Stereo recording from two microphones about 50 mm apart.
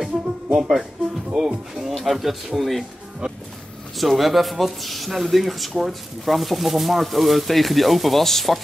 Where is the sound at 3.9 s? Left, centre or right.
Centre.